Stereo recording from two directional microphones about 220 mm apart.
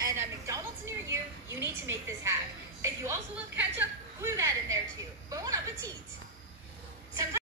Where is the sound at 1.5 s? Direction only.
10° right (ahead or behind).